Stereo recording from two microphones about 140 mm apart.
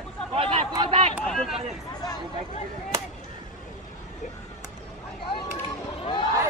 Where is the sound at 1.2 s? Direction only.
Centre (ahead or behind).